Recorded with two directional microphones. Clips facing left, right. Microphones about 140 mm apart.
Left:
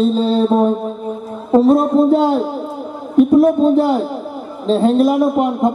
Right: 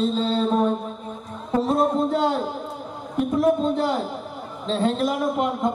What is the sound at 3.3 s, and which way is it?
Speech, 35° left (ahead or behind).